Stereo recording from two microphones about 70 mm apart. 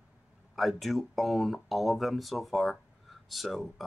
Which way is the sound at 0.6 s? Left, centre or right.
Centre.